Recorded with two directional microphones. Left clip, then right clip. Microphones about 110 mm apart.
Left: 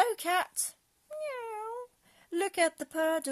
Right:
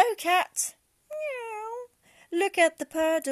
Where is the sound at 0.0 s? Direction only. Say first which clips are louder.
Right 5 dB; 30° right (ahead or behind).